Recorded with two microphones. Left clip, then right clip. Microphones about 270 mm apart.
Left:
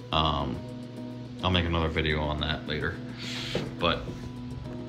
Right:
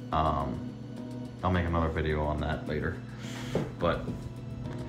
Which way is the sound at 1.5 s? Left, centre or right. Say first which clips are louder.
Left 3 dB; left.